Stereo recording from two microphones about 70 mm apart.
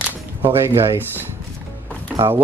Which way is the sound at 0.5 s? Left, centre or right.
Right.